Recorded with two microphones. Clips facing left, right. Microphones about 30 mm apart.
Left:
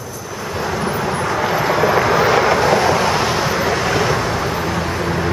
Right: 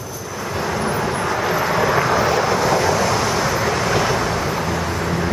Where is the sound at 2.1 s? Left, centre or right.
Left.